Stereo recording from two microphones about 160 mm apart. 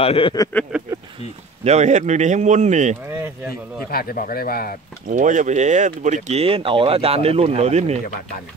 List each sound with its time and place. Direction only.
0.0 s speech: 35° left (ahead or behind)
0.7 s speech: 10° right (ahead or behind)
1.6 s speech: 45° right (ahead or behind)
3.9 s speech: 65° left (ahead or behind)
5.1 s speech: 50° right (ahead or behind)